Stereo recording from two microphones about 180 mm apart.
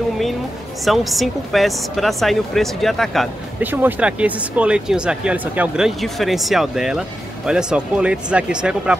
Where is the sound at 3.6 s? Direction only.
10° right (ahead or behind).